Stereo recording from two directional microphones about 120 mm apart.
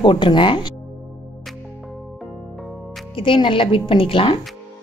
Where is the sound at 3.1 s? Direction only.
45° left (ahead or behind).